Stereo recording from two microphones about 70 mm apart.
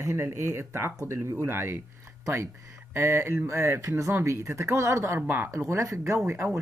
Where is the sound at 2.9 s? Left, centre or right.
Right.